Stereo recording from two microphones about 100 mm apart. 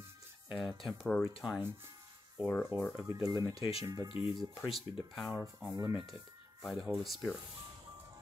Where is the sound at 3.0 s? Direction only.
30° right (ahead or behind).